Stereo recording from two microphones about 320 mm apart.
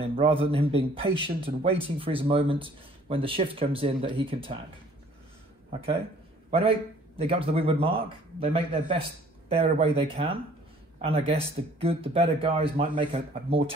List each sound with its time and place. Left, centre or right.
0.0 s a man's voice: centre
7.2 s a man's voice: centre